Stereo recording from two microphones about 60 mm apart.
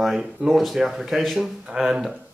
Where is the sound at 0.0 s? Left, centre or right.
Centre.